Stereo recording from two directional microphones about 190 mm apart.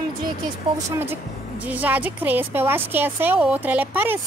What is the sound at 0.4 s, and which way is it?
Speech, 20° right (ahead or behind).